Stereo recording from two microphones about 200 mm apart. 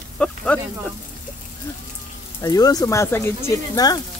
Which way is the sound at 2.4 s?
20° left (ahead or behind).